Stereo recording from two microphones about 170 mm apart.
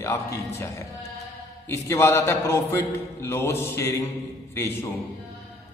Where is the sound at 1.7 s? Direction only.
15° left (ahead or behind).